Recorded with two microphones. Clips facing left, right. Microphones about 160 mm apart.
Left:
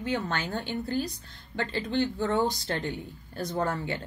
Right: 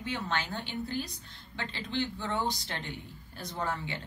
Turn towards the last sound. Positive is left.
turn(degrees=45)  # may be behind; listen again after turning